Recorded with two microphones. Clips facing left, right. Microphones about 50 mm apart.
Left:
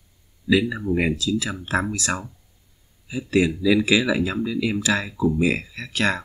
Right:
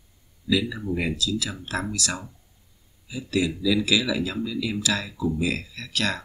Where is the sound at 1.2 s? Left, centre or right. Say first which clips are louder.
Left 3 dB; left.